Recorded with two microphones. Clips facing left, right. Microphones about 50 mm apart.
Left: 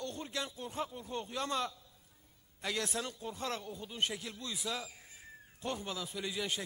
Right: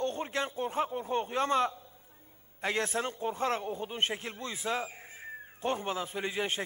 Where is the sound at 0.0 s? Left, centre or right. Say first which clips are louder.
Right 8 dB; right.